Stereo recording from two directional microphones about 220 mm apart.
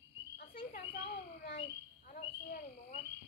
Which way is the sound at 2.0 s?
35° left (ahead or behind).